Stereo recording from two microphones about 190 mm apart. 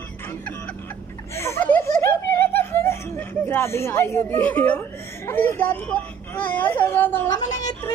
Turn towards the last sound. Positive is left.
turn(degrees=20)  # may be behind; listen again after turning